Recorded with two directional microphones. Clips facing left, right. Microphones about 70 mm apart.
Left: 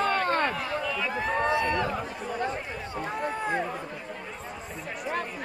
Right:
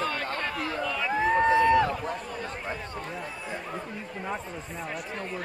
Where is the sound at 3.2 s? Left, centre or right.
Left.